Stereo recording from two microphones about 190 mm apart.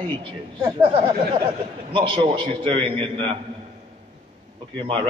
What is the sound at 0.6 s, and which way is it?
A man's voice, 25° right (ahead or behind).